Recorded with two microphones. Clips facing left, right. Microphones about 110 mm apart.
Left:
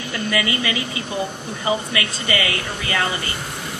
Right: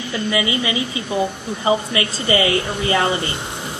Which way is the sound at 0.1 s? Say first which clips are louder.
Right 2 dB; 20° right (ahead or behind).